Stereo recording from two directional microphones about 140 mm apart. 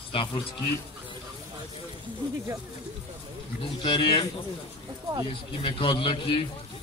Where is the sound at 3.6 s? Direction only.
35° left (ahead or behind).